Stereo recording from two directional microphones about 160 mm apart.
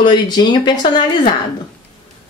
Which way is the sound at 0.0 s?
30° left (ahead or behind).